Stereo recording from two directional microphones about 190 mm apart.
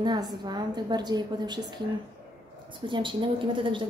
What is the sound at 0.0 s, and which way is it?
Speech, 20° right (ahead or behind).